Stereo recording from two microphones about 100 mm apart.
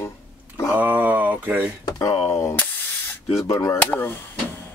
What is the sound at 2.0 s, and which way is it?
Speech, 30° left (ahead or behind).